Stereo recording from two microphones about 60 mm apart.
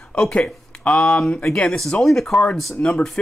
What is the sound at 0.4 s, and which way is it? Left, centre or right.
Speech, centre.